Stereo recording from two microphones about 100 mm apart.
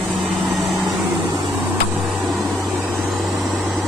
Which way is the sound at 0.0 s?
10° right (ahead or behind).